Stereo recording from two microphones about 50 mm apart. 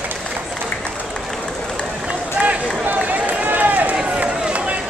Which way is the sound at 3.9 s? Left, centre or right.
Centre.